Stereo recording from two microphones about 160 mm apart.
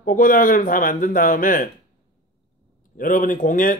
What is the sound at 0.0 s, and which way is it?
Speech, 60° left (ahead or behind).